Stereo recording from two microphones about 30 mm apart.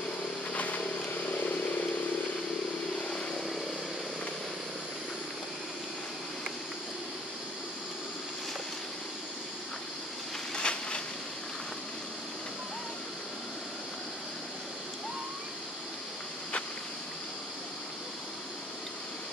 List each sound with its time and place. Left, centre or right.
0.5 s vehicle: left
3.0 s vehicle: left
10.5 s a sound: left